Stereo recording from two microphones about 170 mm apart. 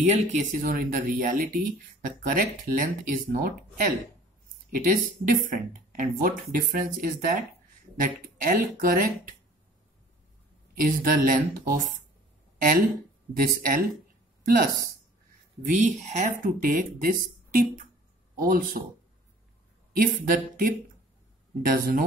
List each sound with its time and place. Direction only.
0.1 s speech: 45° right (ahead or behind)
8.4 s speech: 55° right (ahead or behind)
10.7 s speech: 55° right (ahead or behind)
15.6 s speech: 45° right (ahead or behind)
19.9 s speech: 55° right (ahead or behind)